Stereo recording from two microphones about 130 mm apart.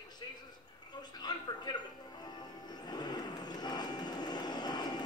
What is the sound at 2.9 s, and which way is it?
Vehicle, 35° left (ahead or behind).